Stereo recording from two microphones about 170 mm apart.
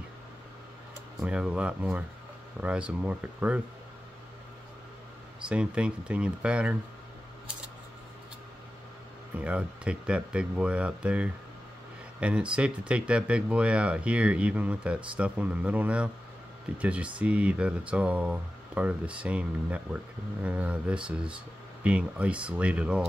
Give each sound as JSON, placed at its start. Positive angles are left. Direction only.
{"t": 1.2, "sound": "speech", "side_deg": -5}
{"t": 5.5, "sound": "speech", "side_deg": -5}
{"t": 9.4, "sound": "speech", "side_deg": -5}